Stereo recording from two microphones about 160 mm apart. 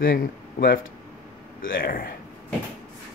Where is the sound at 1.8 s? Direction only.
65° left (ahead or behind).